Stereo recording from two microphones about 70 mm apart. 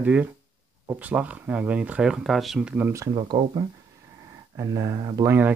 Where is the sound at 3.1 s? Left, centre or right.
Right.